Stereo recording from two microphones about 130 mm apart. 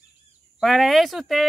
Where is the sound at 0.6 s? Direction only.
Centre (ahead or behind).